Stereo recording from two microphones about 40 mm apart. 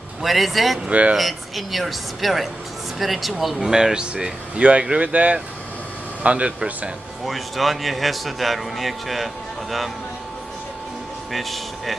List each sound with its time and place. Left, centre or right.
0.2 s a man's voice: centre
0.8 s speech: right
1.1 s a man's voice: centre
3.7 s speech: centre
7.2 s a man's voice: centre
11.3 s a man's voice: centre